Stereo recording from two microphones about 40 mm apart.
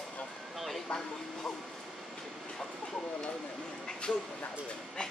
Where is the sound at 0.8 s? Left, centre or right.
Left.